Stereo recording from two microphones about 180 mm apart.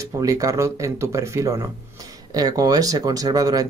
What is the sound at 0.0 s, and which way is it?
Speech, 20° right (ahead or behind).